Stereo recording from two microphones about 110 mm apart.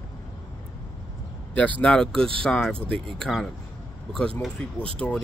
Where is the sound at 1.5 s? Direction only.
10° left (ahead or behind).